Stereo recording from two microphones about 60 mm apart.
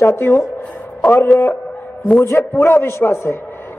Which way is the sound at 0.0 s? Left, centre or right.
Left.